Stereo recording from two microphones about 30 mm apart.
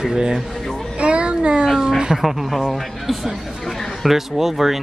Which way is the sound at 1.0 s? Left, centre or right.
Right.